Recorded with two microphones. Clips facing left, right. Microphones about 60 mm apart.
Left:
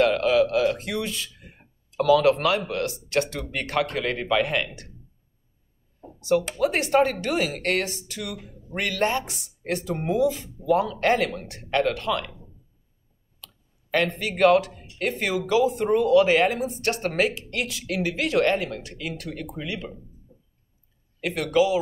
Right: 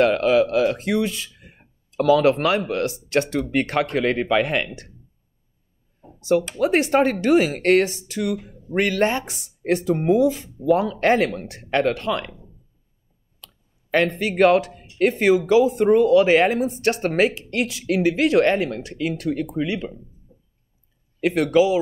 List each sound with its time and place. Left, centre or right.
0.0 s speech: right
6.2 s speech: right
13.8 s speech: right
21.2 s speech: right